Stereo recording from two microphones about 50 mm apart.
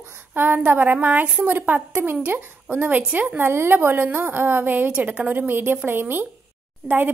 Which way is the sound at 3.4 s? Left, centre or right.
Right.